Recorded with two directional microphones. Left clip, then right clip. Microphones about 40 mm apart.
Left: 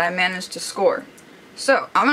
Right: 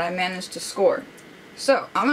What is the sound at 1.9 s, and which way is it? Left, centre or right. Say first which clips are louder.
Speech: left 5 dB; left.